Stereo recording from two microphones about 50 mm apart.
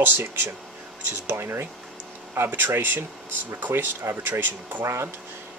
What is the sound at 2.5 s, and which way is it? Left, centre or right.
Speech, right.